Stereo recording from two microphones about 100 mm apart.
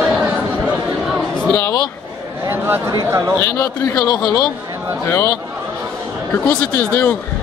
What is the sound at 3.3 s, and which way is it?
A man's voice, 30° left (ahead or behind).